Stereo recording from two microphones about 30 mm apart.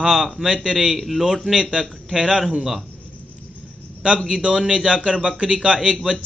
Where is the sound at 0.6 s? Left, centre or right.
Right.